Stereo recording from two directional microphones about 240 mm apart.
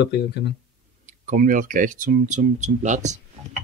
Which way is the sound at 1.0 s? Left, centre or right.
Right.